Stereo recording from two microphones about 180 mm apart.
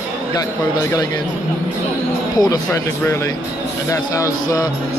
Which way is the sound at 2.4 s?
20° left (ahead or behind).